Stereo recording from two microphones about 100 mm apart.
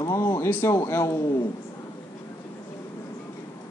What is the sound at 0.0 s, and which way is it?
Speech, 30° left (ahead or behind).